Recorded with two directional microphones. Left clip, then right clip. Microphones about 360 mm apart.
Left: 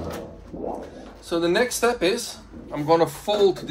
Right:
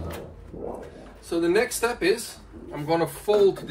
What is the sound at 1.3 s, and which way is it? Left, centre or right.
Speech, left.